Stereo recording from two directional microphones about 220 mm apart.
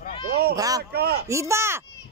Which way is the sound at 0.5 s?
15° right (ahead or behind).